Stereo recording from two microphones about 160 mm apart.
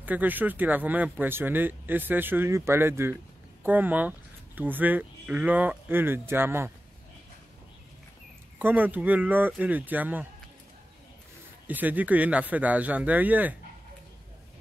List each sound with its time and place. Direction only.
0.0 s speech: 10° right (ahead or behind)
8.5 s speech: 10° right (ahead or behind)
11.6 s speech: 10° right (ahead or behind)